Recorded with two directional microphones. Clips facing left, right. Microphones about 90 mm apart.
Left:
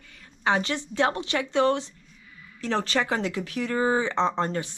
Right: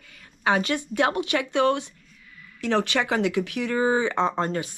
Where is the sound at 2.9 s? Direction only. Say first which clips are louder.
Right 2 dB; 70° right (ahead or behind).